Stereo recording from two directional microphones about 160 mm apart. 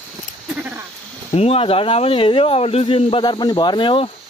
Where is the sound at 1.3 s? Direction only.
40° left (ahead or behind).